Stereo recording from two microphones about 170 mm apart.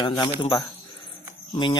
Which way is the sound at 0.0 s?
25° left (ahead or behind).